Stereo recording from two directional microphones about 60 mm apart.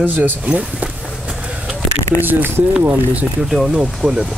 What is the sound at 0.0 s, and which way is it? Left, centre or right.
Speech, right.